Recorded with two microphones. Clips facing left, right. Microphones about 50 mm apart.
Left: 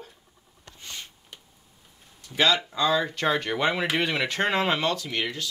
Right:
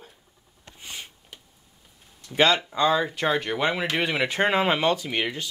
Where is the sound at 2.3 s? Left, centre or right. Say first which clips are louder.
Right 2 dB; centre.